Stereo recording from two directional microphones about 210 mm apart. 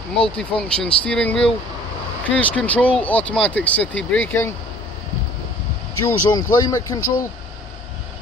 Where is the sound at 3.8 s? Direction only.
60° left (ahead or behind).